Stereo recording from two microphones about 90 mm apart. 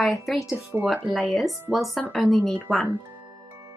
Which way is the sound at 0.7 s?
25° right (ahead or behind).